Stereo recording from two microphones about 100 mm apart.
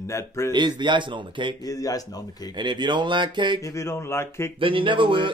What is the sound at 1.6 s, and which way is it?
Speech, 35° left (ahead or behind).